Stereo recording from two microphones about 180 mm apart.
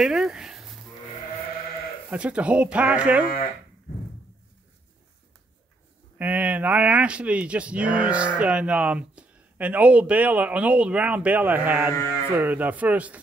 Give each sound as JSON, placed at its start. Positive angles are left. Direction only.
{"t": 0.0, "sound": "a sound", "side_deg": -5}
{"t": 2.0, "sound": "speech", "side_deg": -5}
{"t": 6.1, "sound": "speech", "side_deg": -10}